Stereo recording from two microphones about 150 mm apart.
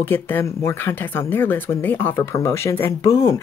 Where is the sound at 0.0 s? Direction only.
15° left (ahead or behind).